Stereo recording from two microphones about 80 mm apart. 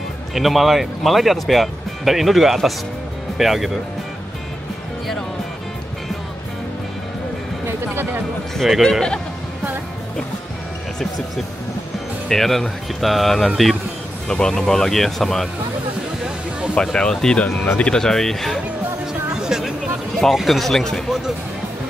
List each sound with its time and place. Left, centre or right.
0.3 s speech: centre
7.6 s a sound: right
8.5 s speech: centre
12.3 s speech: centre
16.7 s speech: centre
19.3 s music: centre
20.2 s speech: centre